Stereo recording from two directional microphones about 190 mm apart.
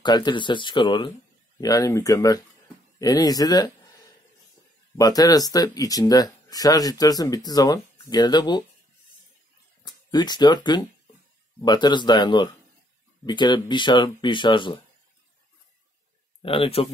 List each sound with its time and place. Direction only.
0.0 s speech: 25° left (ahead or behind)
4.9 s speech: 20° left (ahead or behind)
9.8 s speech: 20° left (ahead or behind)
16.4 s speech: 30° left (ahead or behind)